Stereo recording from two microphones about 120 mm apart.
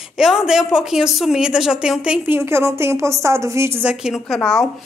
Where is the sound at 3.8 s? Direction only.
5° right (ahead or behind).